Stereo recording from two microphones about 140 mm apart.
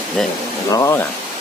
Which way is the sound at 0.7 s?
20° left (ahead or behind).